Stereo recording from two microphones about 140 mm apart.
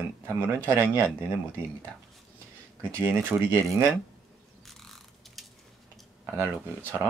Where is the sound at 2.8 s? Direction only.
15° right (ahead or behind).